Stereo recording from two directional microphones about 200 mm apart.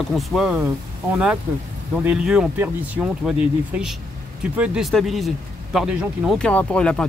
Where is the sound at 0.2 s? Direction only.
Centre (ahead or behind).